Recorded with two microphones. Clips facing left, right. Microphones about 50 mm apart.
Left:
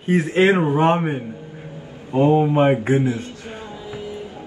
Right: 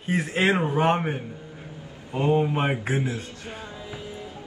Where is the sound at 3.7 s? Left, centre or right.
Left.